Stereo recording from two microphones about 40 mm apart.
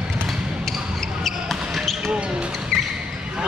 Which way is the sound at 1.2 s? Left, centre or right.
Centre.